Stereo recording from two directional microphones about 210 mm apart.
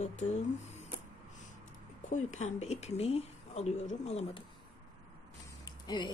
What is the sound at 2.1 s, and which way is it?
Speech, 35° left (ahead or behind).